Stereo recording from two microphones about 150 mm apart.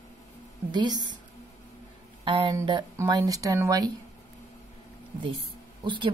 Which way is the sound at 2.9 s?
25° right (ahead or behind).